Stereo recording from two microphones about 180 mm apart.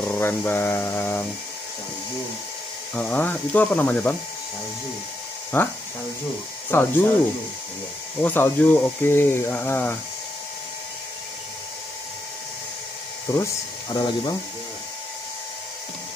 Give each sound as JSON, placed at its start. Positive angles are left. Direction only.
{"t": 0.1, "sound": "speech", "side_deg": 10}
{"t": 2.9, "sound": "speech", "side_deg": 10}
{"t": 5.5, "sound": "speech", "side_deg": 10}
{"t": 8.2, "sound": "speech", "side_deg": 10}
{"t": 13.3, "sound": "speech", "side_deg": 20}